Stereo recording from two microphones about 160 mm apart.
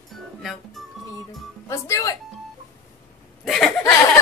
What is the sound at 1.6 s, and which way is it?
Speech, 20° left (ahead or behind).